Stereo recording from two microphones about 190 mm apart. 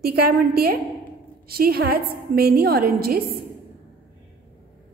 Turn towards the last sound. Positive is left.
turn(degrees=-50)  # may be behind; listen again after turning